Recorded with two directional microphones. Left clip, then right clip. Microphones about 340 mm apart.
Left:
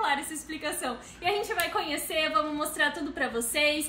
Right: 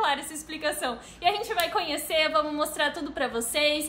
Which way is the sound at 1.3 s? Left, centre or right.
Centre.